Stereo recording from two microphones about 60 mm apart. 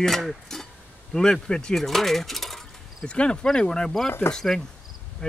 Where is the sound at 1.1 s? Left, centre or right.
Centre.